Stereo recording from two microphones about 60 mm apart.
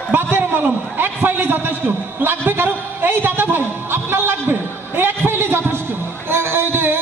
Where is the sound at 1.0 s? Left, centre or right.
Right.